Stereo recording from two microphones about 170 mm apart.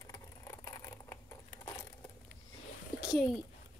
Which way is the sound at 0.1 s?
20° left (ahead or behind).